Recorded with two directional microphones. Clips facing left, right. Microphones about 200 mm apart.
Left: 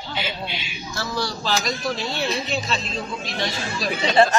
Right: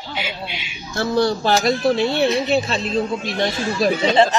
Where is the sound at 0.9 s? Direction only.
55° right (ahead or behind).